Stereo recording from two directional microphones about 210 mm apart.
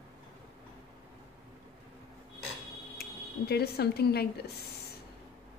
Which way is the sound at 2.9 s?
50° left (ahead or behind).